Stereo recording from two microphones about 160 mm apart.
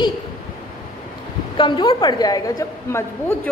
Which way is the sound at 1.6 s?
35° left (ahead or behind).